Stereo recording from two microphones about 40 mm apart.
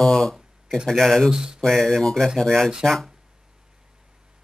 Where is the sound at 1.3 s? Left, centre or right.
Centre.